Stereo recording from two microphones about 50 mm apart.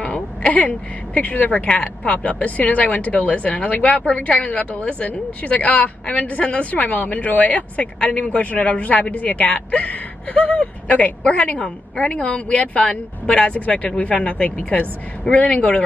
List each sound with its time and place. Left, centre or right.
0.0 s speech: left
1.7 s speech: left